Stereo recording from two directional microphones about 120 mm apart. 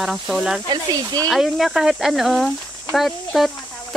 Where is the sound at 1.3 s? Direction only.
Centre (ahead or behind).